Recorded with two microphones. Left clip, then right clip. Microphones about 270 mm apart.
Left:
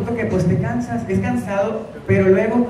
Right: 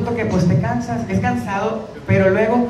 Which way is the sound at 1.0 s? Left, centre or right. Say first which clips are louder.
Right 1 dB; right.